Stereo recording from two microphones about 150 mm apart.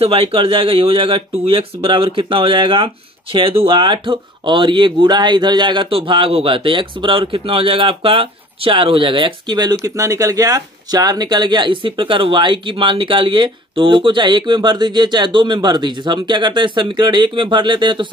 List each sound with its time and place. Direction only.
0.0 s speech: 40° right (ahead or behind)